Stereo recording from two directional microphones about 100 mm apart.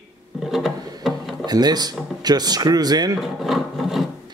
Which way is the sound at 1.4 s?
40° right (ahead or behind).